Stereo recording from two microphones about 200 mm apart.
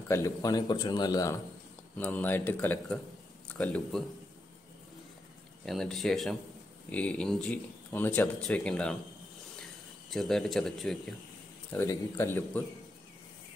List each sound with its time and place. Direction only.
0.1 s a man's voice: 15° left (ahead or behind)
5.7 s speech: centre (ahead or behind)
9.6 s a sound: centre (ahead or behind)
11.7 s speech: 15° left (ahead or behind)